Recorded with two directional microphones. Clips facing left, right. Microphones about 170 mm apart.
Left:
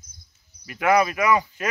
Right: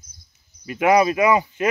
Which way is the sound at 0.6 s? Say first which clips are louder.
Right 3 dB; 20° right (ahead or behind).